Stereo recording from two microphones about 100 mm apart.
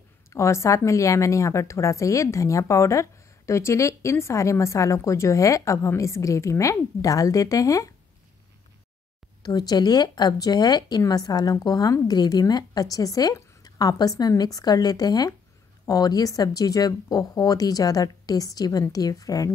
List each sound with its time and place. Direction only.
0.3 s a woman's voice: 30° left (ahead or behind)
9.4 s a woman's voice: 40° left (ahead or behind)